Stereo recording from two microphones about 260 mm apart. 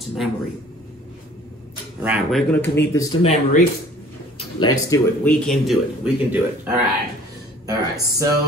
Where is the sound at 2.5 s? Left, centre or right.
Centre.